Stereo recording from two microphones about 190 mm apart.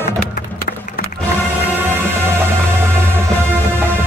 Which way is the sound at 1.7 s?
10° right (ahead or behind).